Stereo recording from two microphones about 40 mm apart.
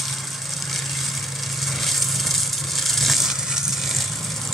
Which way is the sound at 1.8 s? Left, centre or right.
Centre.